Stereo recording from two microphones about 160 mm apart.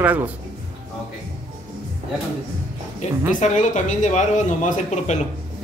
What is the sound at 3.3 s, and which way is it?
Speech, 50° left (ahead or behind).